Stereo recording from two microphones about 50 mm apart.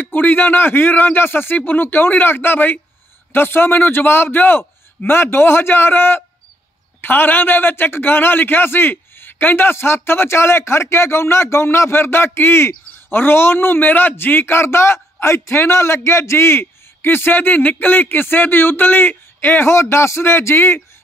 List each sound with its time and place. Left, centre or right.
0.0 s a man's voice: left
19.6 s speech: left